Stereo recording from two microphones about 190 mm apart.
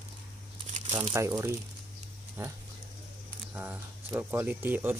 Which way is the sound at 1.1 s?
15° right (ahead or behind).